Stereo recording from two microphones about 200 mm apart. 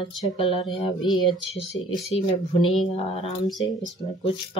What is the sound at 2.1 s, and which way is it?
Speech, 30° left (ahead or behind).